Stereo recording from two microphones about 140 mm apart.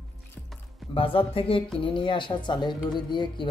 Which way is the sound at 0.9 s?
40° left (ahead or behind).